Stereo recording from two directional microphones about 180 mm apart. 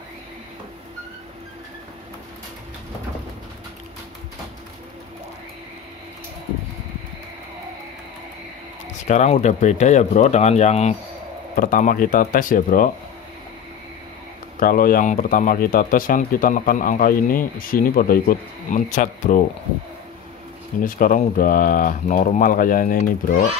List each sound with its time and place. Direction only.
9.0 s speech: 40° left (ahead or behind)
11.5 s speech: 50° left (ahead or behind)
14.6 s speech: 50° left (ahead or behind)
20.8 s speech: 50° left (ahead or behind)